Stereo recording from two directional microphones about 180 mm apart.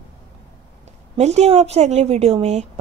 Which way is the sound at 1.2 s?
35° right (ahead or behind).